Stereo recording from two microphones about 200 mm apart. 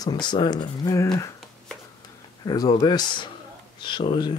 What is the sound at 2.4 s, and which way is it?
Speech, 20° left (ahead or behind).